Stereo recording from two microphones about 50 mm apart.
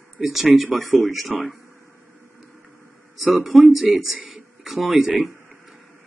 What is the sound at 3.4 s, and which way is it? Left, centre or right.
Speech, centre.